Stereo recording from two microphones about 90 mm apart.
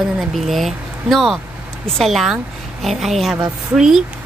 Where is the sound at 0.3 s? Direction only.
Centre (ahead or behind).